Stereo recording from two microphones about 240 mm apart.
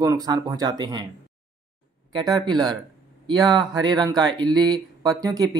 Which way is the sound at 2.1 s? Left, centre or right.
Centre.